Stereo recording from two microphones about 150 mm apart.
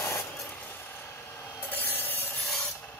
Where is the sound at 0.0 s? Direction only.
20° left (ahead or behind).